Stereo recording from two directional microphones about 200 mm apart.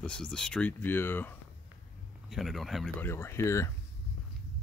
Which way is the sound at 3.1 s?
10° left (ahead or behind).